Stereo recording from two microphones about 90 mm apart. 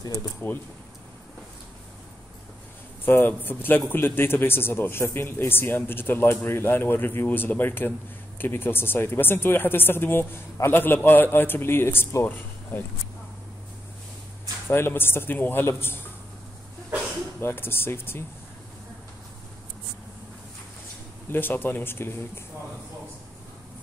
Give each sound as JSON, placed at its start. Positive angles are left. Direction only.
{"t": 3.1, "sound": "speech", "side_deg": 20}
{"t": 14.7, "sound": "speech", "side_deg": 25}
{"t": 17.4, "sound": "speech", "side_deg": 25}
{"t": 21.3, "sound": "speech", "side_deg": 25}